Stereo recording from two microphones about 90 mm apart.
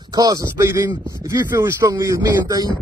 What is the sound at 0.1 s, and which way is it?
Speech, 45° right (ahead or behind).